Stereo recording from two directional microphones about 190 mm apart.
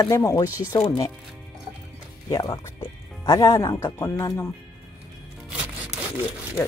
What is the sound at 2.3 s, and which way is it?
Speech, 20° left (ahead or behind).